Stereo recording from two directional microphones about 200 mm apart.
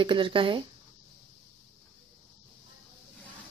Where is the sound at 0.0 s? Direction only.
25° right (ahead or behind).